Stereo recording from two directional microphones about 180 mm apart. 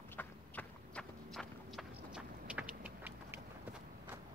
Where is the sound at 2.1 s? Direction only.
5° right (ahead or behind).